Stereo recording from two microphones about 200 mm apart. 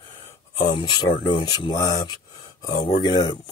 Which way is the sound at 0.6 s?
25° left (ahead or behind).